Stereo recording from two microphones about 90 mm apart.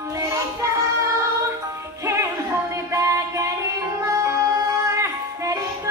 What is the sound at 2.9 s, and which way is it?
Music, 35° right (ahead or behind).